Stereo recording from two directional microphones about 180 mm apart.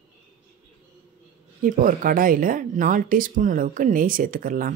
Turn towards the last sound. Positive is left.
turn(degrees=-50)  # may be behind; listen again after turning